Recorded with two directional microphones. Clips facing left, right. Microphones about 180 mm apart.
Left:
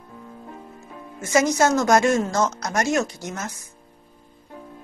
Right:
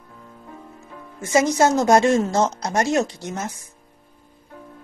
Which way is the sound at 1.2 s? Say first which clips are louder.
Right 1 dB; 25° right (ahead or behind).